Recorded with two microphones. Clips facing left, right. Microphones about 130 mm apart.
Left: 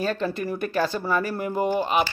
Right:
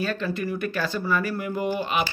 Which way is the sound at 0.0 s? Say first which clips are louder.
Left 1 dB; 40° left (ahead or behind).